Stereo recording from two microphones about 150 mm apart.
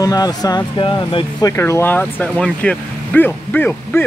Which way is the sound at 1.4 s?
20° left (ahead or behind).